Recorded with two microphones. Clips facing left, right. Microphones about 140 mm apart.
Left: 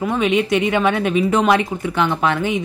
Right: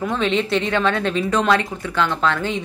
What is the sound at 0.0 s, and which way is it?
A woman's voice, 10° left (ahead or behind).